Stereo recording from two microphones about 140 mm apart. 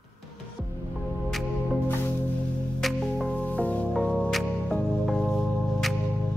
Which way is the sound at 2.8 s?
Centre (ahead or behind).